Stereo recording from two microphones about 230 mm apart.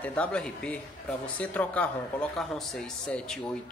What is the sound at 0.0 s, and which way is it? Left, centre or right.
Speech, centre.